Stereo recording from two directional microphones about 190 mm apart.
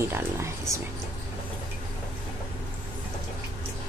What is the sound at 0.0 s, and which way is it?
Speech, 15° right (ahead or behind).